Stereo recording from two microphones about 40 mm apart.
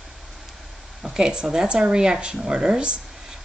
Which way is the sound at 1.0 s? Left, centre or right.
Centre.